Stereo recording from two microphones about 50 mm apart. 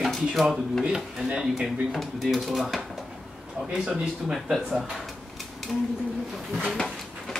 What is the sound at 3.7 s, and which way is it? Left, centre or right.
Speech, centre.